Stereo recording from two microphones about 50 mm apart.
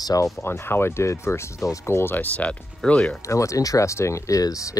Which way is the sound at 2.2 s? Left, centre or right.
Left.